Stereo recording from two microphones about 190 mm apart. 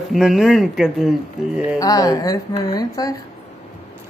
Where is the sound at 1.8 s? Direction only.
20° left (ahead or behind).